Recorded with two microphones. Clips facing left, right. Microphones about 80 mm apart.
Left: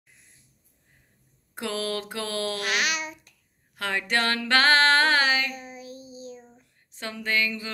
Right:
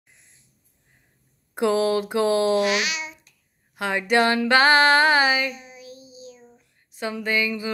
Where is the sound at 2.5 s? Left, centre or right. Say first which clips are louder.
Right 6 dB; left.